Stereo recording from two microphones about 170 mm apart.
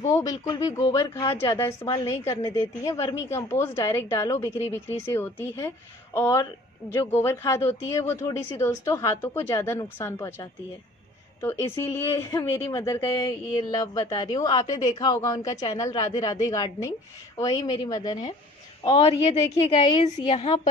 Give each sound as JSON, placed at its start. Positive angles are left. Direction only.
{"t": 0.0, "sound": "a woman's voice", "side_deg": 20}